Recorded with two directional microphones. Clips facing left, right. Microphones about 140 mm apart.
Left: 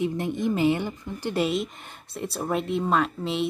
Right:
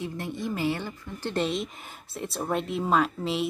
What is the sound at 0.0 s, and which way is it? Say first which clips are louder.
Speech: left 7 dB; 20° left (ahead or behind).